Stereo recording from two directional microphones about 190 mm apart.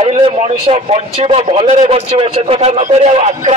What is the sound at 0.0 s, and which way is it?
A man's voice, 30° right (ahead or behind).